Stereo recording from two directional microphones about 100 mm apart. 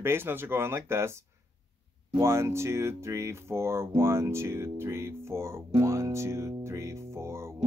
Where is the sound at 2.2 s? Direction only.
25° right (ahead or behind).